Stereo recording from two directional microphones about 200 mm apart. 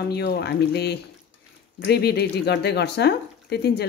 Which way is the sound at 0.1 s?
55° left (ahead or behind).